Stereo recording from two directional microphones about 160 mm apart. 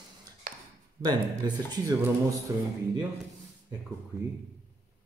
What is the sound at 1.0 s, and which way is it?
Speech, 25° right (ahead or behind).